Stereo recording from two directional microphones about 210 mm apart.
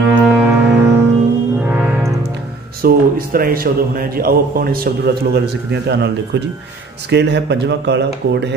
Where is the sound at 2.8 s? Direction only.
45° right (ahead or behind).